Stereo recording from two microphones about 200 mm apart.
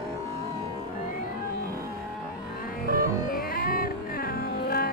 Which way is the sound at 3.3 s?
45° left (ahead or behind).